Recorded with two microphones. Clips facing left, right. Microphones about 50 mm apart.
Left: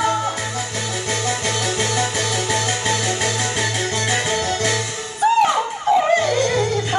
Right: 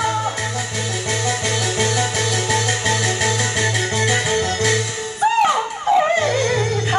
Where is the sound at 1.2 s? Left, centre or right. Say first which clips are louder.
Right 1 dB; centre.